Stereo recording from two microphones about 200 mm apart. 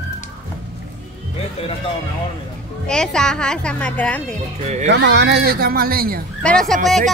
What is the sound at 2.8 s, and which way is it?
Speech, 5° left (ahead or behind).